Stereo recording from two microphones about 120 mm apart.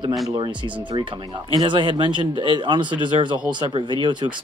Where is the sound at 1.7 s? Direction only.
45° right (ahead or behind).